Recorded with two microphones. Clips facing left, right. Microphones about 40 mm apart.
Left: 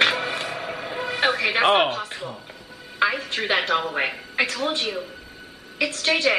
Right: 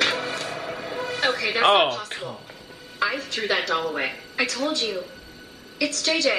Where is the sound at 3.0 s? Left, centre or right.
Left.